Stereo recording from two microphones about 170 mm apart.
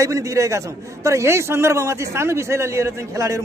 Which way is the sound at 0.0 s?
20° right (ahead or behind).